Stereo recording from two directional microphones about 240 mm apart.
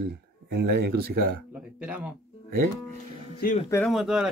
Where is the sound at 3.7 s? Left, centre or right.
Centre.